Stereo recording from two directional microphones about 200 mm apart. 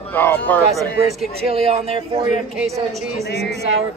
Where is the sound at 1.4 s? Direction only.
30° right (ahead or behind).